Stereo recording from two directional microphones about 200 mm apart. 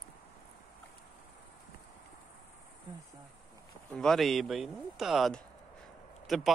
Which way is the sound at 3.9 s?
Centre (ahead or behind).